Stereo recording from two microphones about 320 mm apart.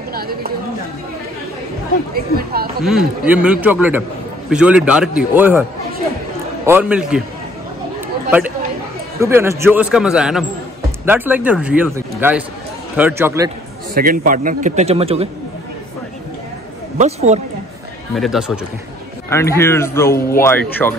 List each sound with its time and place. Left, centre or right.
0.1 s speech: right
2.8 s a man's voice: centre
9.2 s a man's voice: centre
13.9 s a man's voice: right
17.0 s a man's voice: right
18.1 s a man's voice: centre